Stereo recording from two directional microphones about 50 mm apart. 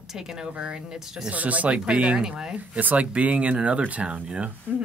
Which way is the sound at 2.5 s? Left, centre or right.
Right.